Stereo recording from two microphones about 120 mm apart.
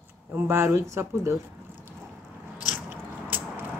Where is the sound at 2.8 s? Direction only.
15° right (ahead or behind).